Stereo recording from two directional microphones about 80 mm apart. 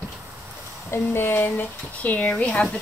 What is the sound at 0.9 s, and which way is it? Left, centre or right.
Speech, left.